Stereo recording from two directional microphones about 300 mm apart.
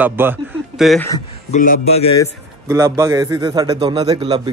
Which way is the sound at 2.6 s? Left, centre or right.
Centre.